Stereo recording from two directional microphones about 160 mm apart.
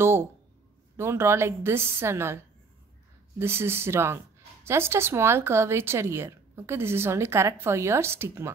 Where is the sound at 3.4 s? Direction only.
15° right (ahead or behind).